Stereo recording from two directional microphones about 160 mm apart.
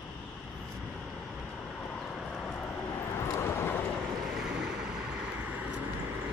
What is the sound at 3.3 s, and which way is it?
Vehicle, 15° left (ahead or behind).